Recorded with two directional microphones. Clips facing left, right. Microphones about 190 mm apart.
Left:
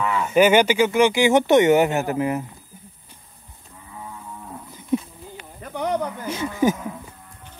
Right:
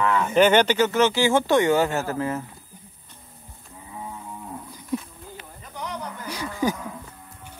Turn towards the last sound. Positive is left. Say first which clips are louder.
# left 5 dB
turn(degrees=20)  # may be behind; listen again after turning